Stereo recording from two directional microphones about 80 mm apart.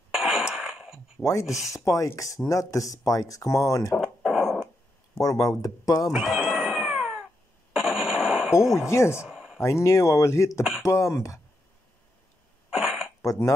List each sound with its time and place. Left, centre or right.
0.1 s a sound: centre
1.4 s speech: centre
1.7 s speech: left
3.9 s a sound: centre
5.1 s speech: left
6.1 s cat: centre
7.7 s a sound: centre
8.7 s speech: left
9.3 s a sound: centre
9.6 s speech: left
10.6 s speech: centre
10.9 s speech: left
12.6 s cough: centre
13.2 s speech: left